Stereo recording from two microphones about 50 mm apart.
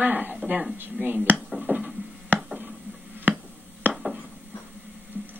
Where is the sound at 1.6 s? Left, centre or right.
Right.